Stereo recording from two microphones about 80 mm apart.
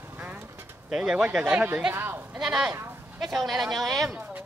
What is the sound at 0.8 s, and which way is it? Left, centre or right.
Speech, centre.